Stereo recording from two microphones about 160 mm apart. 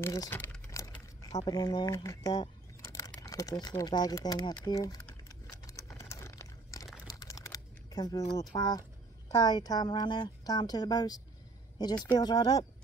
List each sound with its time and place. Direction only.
0.0 s speech: 20° left (ahead or behind)
5.5 s crumpling: 20° left (ahead or behind)
7.1 s a sound: 20° left (ahead or behind)
8.5 s a woman's voice: 25° left (ahead or behind)